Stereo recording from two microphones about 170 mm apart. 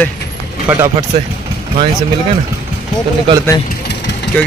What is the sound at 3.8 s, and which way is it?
Vehicle, 80° left.